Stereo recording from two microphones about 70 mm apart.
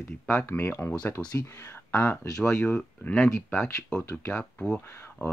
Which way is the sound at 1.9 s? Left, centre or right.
Left.